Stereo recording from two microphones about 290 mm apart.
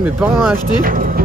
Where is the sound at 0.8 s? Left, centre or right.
Right.